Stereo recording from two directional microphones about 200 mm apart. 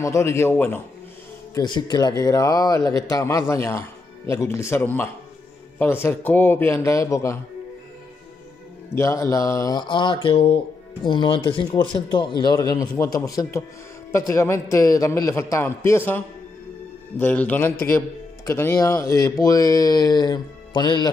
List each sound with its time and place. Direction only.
0.0 s speech: 15° left (ahead or behind)
1.5 s speech: 20° left (ahead or behind)
8.9 s speech: 15° left (ahead or behind)
17.2 s speech: 10° left (ahead or behind)